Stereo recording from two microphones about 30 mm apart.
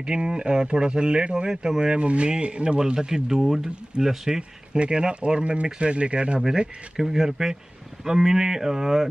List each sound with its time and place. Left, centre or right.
0.0 s speech: right
1.3 s speech: right
2.0 s speech: right
2.8 s speech: right
3.3 s speech: centre
3.6 s speech: right
4.4 s speech: right
5.4 s speech: right
7.0 s speech: centre